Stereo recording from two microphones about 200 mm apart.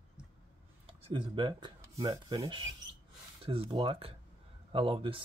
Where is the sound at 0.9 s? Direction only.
25° right (ahead or behind).